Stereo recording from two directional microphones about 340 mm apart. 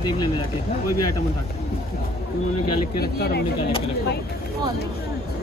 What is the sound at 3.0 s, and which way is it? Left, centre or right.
Speech, left.